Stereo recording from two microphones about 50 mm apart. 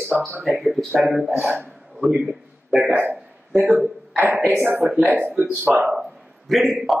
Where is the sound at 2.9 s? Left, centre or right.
Right.